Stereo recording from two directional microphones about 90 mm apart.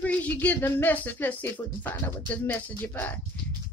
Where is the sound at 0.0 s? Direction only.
15° left (ahead or behind).